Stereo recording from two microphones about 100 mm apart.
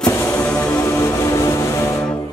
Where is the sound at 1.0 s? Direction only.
30° left (ahead or behind).